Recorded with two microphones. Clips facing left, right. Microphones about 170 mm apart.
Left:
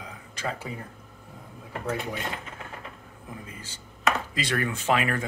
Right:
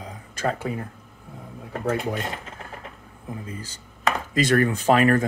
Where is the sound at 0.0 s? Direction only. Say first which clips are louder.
Right 7 dB; 35° right (ahead or behind).